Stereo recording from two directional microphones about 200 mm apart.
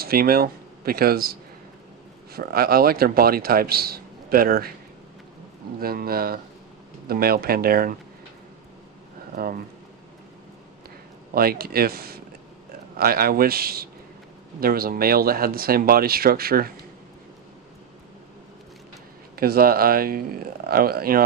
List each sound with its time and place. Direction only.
0.0 s a man's voice: 50° right (ahead or behind)
5.8 s a man's voice: 50° right (ahead or behind)
9.3 s speech: 45° right (ahead or behind)
11.3 s a man's voice: 50° right (ahead or behind)
19.3 s a man's voice: 50° right (ahead or behind)